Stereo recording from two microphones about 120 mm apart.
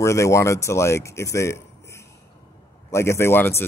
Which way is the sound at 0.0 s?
25° left (ahead or behind).